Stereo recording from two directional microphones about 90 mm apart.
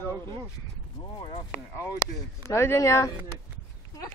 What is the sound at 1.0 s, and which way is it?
Speech, 70° left (ahead or behind).